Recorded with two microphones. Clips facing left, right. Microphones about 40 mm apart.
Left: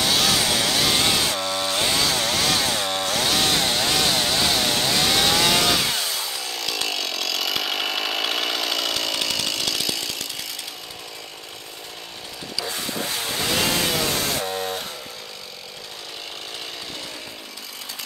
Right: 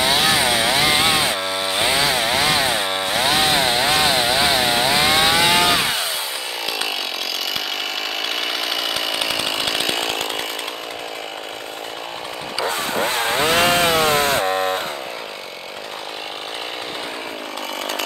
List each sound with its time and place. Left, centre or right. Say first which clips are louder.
0.0 s chainsaw: right 4 dB; centre
7.4 s chainsaw: even; centre; by 10.2 s right
12.6 s chainsaw: right 8 dB; right